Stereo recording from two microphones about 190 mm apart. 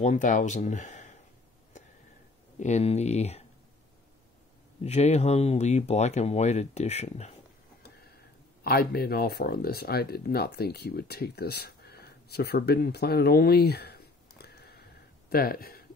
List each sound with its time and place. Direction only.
0.0 s speech: 40° left (ahead or behind)
2.6 s speech: 35° left (ahead or behind)
4.8 s speech: 35° left (ahead or behind)
8.6 s speech: 55° left (ahead or behind)